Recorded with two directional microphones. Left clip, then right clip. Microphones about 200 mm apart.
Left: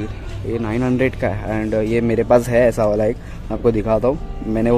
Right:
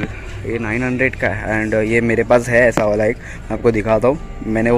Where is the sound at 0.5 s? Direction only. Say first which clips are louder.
Right 1 dB; 10° left (ahead or behind).